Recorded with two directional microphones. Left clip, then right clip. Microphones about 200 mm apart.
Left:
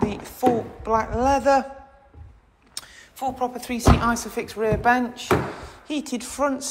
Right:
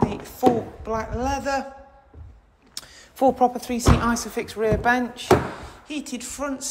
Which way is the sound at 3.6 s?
15° right (ahead or behind).